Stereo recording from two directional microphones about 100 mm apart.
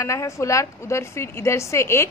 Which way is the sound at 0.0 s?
30° left (ahead or behind).